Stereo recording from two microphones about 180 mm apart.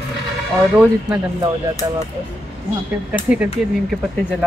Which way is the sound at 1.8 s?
20° right (ahead or behind).